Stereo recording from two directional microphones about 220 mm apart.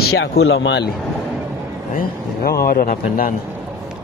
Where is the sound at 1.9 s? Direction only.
45° left (ahead or behind).